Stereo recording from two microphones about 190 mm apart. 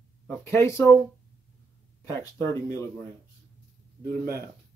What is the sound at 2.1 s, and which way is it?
Speech, 15° left (ahead or behind).